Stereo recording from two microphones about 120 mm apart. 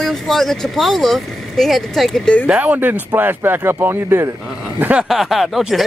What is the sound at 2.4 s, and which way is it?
Speech, 10° right (ahead or behind).